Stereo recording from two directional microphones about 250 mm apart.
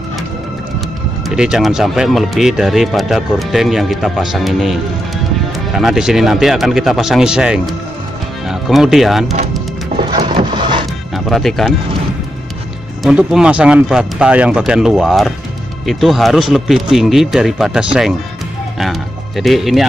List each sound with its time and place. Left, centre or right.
1.3 s speech: centre
5.8 s speech: centre
9.9 s music: centre
11.1 s speech: centre
13.0 s speech: centre